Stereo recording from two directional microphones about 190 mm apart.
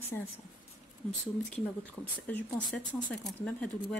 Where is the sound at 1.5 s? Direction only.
10° left (ahead or behind).